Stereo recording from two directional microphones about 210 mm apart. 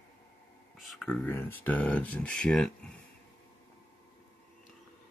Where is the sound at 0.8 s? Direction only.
Centre (ahead or behind).